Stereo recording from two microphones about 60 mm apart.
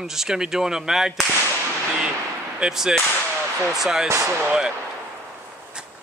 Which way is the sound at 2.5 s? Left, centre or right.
Centre.